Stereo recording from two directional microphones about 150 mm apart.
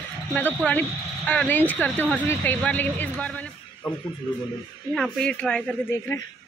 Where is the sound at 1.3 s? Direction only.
10° left (ahead or behind).